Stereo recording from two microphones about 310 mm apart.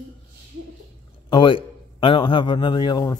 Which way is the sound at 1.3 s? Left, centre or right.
Centre.